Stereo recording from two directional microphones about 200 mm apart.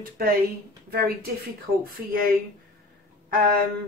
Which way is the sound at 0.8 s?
50° right (ahead or behind).